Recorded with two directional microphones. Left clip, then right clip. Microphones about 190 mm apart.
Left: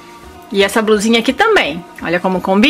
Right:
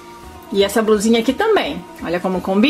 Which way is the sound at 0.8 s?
25° left (ahead or behind).